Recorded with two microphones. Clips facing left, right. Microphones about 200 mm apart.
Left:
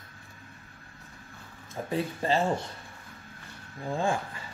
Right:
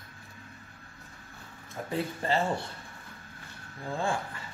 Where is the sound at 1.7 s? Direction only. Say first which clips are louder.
Left 2 dB; 15° left (ahead or behind).